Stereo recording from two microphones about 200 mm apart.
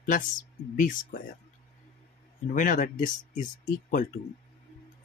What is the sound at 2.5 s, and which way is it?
Speech, 40° left (ahead or behind).